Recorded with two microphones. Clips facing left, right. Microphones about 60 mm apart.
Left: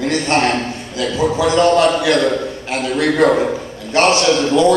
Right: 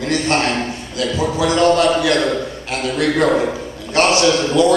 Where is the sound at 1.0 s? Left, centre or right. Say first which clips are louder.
Left 2 dB; left.